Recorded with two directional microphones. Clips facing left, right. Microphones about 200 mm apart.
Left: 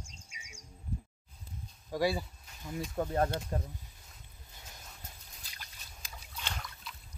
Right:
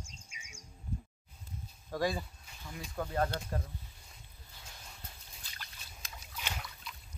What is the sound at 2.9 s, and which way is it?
Speech, 25° left (ahead or behind).